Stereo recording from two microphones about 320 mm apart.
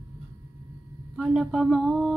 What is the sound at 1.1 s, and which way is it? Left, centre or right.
Speech, centre.